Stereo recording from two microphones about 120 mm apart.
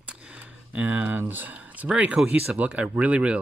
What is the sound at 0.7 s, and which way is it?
Speech, 15° right (ahead or behind).